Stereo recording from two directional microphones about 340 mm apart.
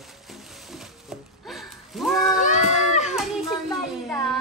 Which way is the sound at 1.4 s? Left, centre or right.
Centre.